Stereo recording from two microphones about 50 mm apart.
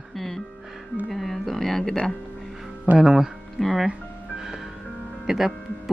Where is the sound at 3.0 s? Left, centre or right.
Centre.